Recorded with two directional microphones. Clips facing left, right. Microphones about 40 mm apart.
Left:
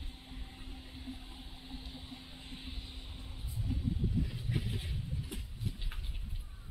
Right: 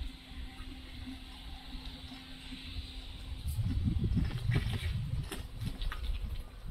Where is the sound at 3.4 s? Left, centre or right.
Right.